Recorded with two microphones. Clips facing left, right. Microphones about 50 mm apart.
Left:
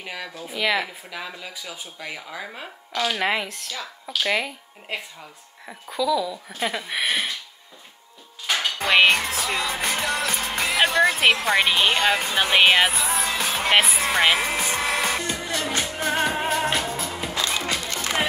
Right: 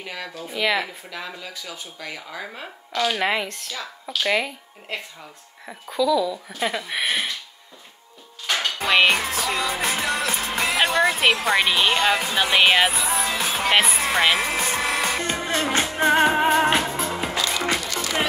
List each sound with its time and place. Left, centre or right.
0.0 s speech: centre
8.5 s music: centre
15.2 s music: right
17.4 s music: left